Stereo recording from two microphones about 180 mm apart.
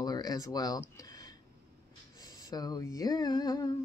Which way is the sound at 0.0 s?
20° left (ahead or behind).